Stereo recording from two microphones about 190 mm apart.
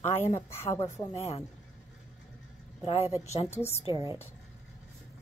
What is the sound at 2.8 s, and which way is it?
Speech, 30° left (ahead or behind).